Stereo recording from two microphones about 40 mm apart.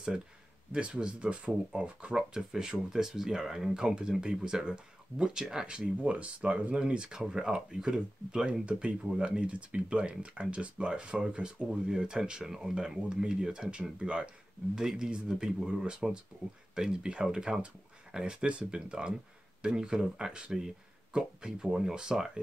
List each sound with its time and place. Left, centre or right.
0.7 s speech: right
2.9 s speech: centre
3.8 s speech: right